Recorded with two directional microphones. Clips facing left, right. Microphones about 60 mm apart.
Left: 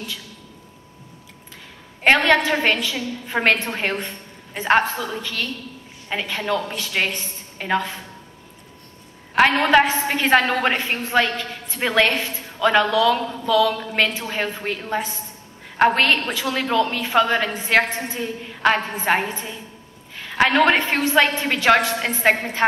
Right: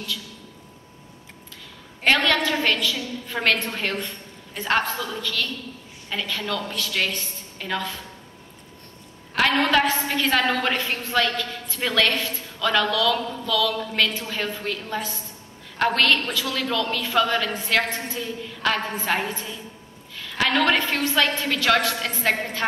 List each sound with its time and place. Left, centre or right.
2.0 s a woman's voice: left
9.3 s a woman's voice: left